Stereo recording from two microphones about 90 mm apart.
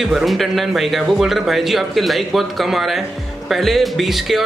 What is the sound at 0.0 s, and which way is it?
A man's voice, centre (ahead or behind).